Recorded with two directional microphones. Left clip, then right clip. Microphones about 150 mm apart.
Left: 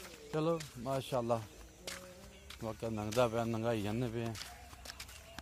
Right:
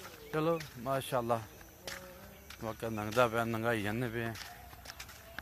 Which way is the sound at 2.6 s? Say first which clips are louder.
Right 2 dB; 5° left (ahead or behind).